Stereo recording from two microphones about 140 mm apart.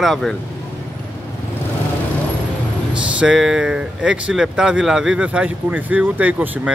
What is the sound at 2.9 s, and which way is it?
Speech, 5° right (ahead or behind).